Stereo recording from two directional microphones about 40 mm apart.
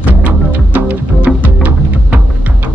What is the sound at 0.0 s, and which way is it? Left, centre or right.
Music, right.